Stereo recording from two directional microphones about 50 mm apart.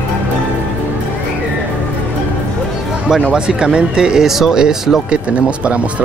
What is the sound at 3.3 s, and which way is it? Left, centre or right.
Speech, centre.